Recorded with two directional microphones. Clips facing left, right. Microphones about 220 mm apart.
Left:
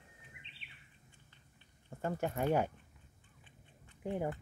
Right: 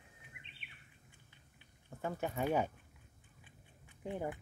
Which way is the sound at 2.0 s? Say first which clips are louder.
Left 2 dB; 10° left (ahead or behind).